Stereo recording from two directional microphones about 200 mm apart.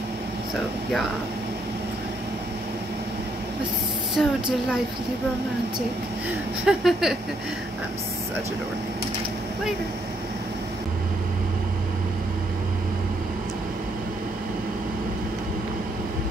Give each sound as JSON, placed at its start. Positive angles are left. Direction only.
{"t": 4.1, "sound": "speech", "side_deg": 0}
{"t": 6.6, "sound": "speech", "side_deg": 0}